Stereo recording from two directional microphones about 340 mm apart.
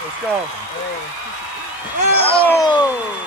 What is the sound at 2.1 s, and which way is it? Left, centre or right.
Speech, centre.